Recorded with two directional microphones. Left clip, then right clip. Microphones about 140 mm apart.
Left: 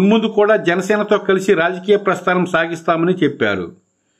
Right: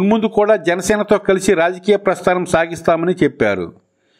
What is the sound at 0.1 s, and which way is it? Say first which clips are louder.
A man's voice: right 1 dB; 40° right (ahead or behind).